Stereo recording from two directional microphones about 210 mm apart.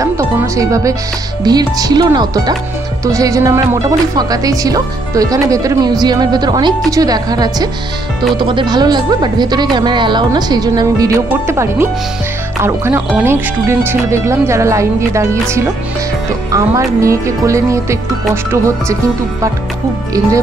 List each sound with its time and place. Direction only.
0.0 s speech: 15° right (ahead or behind)
16.5 s speech: 15° right (ahead or behind)